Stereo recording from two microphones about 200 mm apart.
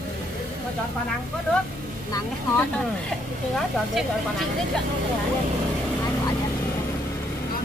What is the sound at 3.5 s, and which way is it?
Speech, centre (ahead or behind).